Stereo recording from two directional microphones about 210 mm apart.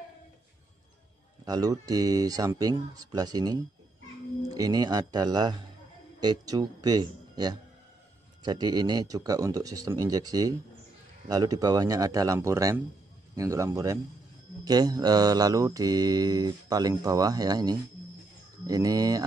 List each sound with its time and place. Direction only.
1.4 s speech: 15° right (ahead or behind)
4.6 s mantra: 20° right (ahead or behind)
6.2 s speech: 20° right (ahead or behind)
14.6 s mantra: 20° right (ahead or behind)
18.7 s speech: 15° right (ahead or behind)